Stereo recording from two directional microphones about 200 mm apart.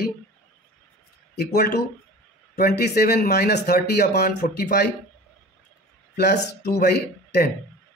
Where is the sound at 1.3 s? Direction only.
55° left (ahead or behind).